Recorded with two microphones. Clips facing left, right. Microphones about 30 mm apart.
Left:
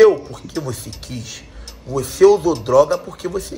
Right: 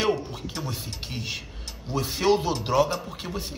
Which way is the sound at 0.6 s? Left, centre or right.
Centre.